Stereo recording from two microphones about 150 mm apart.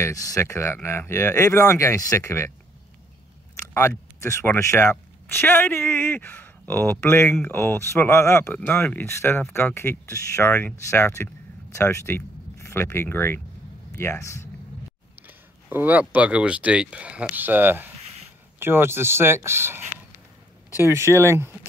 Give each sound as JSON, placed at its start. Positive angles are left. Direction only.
{"t": 0.0, "sound": "speech", "side_deg": 20}
{"t": 4.2, "sound": "speech", "side_deg": 20}
{"t": 15.2, "sound": "speech", "side_deg": -10}
{"t": 20.8, "sound": "speech", "side_deg": -20}